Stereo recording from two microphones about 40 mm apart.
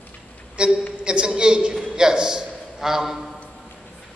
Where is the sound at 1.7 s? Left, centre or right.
Centre.